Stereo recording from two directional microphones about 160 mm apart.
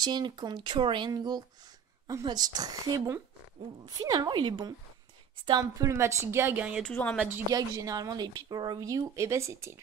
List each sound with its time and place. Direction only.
0.0 s a woman's voice: 25° right (ahead or behind); by 6.8 s 10° right (ahead or behind)
6.8 s a woman's voice: 10° left (ahead or behind)
7.2 s a woman's voice: 15° right (ahead or behind)